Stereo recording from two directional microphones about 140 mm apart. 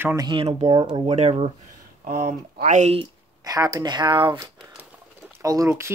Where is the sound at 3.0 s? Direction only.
25° right (ahead or behind).